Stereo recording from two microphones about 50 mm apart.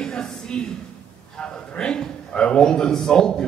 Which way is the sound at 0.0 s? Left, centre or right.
Centre.